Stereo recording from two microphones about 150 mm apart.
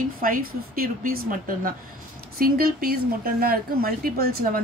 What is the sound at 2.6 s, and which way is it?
Speech, 85° right.